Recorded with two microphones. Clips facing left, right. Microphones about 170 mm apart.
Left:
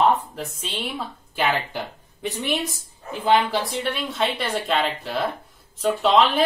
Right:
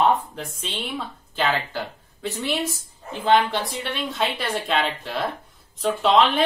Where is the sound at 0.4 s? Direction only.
10° left (ahead or behind).